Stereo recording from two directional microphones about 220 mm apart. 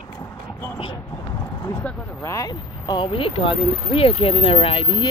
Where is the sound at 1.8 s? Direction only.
10° left (ahead or behind).